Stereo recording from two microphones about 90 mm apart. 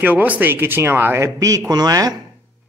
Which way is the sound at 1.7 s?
45° right (ahead or behind).